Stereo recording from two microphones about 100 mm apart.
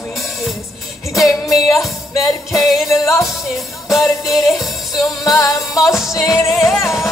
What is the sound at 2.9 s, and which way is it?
Music, 30° left (ahead or behind).